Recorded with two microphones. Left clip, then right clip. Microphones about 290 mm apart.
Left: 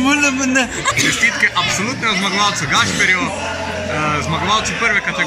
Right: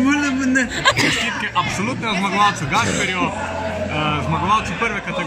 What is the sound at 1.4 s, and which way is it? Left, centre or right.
Speech, centre.